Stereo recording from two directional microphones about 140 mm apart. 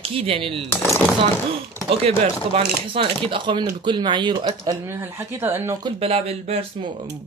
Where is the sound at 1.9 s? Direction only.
45° right (ahead or behind).